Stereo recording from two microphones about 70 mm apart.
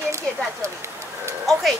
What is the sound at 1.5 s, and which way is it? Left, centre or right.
Speech, centre.